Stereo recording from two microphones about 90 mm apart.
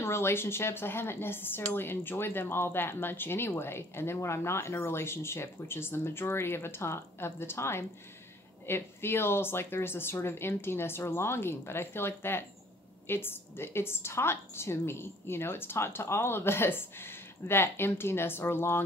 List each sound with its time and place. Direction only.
0.0 s speech: 30° left (ahead or behind)